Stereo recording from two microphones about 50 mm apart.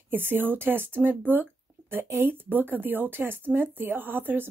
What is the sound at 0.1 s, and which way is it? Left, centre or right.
Speech, right.